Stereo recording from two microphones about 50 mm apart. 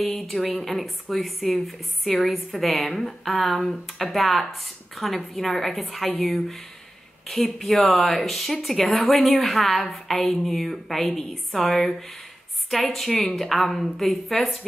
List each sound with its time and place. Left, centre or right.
0.0 s a woman's voice: centre
13.1 s a woman's voice: left
13.4 s a woman's voice: centre